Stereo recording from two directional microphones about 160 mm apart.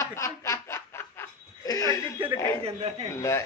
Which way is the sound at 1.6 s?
20° left (ahead or behind).